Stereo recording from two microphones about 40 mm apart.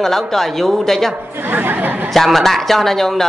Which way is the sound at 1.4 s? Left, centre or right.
Right.